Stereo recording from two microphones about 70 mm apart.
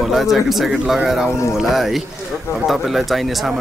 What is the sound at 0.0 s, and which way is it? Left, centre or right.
Speech, centre.